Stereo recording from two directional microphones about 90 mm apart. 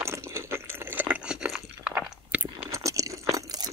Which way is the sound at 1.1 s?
15° right (ahead or behind).